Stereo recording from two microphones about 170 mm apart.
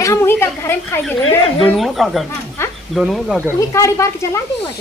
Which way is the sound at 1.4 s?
Centre (ahead or behind).